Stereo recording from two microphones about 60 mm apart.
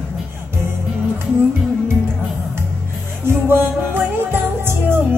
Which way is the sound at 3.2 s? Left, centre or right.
Right.